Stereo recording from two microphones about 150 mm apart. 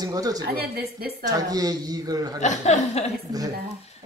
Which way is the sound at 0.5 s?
90° right.